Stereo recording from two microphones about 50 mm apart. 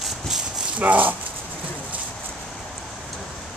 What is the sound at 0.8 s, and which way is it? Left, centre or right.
Speech, right.